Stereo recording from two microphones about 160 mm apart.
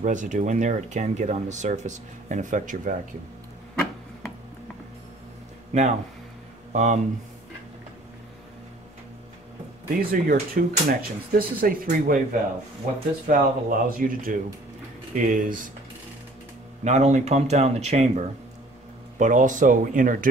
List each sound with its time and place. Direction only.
0.0 s speech: 50° right (ahead or behind)
5.7 s speech: 45° right (ahead or behind)
9.9 s speech: 65° right (ahead or behind)
16.8 s speech: 45° right (ahead or behind)